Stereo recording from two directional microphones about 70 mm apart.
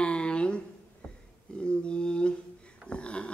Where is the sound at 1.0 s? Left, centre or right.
Centre.